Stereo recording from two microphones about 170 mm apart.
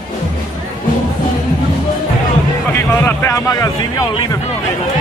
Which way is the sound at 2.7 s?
15° left (ahead or behind).